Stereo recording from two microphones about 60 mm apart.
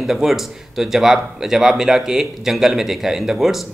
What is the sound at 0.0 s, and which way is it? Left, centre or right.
Speech, centre.